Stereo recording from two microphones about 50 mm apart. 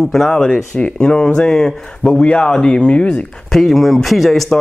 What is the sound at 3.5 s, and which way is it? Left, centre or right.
Speech, centre.